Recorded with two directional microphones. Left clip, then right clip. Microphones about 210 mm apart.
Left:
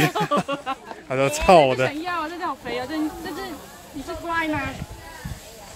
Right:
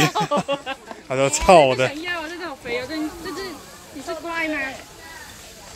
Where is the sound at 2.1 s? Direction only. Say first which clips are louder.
Left 3 dB; 50° left (ahead or behind).